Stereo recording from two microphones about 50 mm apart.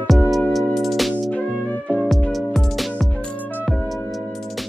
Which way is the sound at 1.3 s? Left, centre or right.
Left.